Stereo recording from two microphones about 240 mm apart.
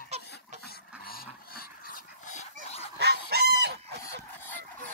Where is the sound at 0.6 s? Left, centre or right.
Left.